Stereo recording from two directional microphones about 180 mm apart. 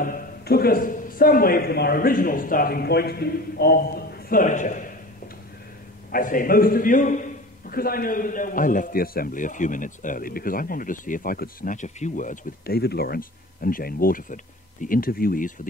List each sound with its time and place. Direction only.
0.0 s a man's voice: 55° left (ahead or behind)
4.3 s a man's voice: 45° left (ahead or behind)
6.1 s a man's voice: 50° left (ahead or behind)